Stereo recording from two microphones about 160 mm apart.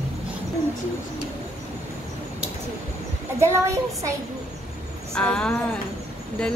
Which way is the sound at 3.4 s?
15° right (ahead or behind).